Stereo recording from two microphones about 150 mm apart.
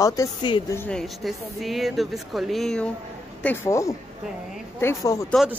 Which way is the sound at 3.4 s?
15° left (ahead or behind).